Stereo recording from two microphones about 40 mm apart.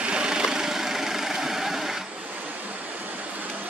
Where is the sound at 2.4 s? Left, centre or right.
Right.